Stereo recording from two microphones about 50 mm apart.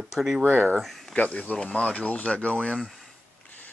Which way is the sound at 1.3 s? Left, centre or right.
Left.